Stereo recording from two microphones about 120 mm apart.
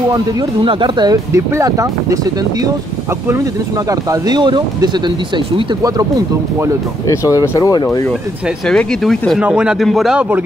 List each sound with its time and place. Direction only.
0.7 s speech: 45° right (ahead or behind); by 2.1 s 25° right (ahead or behind)
3.3 s speech: 25° right (ahead or behind)
7.1 s speech: 25° left (ahead or behind)
8.6 s speech: 5° left (ahead or behind)
9.4 s speech: 10° right (ahead or behind)